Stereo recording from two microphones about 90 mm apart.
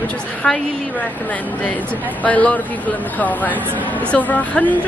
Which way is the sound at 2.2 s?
15° left (ahead or behind).